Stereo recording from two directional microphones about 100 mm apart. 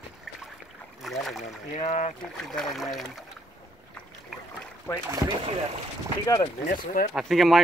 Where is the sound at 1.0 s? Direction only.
Centre (ahead or behind).